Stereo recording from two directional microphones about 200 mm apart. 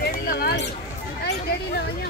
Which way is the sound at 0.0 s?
50° left (ahead or behind).